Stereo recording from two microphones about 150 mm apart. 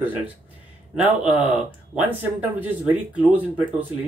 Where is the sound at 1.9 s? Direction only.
5° right (ahead or behind).